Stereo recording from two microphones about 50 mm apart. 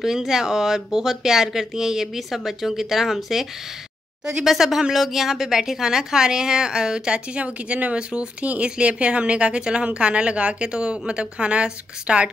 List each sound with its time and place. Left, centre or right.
0.0 s a woman's voice: centre